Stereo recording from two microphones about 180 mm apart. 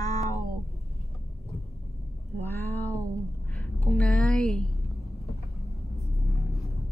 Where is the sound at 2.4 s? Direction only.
10° left (ahead or behind).